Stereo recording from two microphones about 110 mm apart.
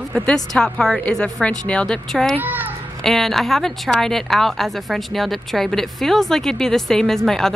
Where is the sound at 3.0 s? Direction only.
5° left (ahead or behind).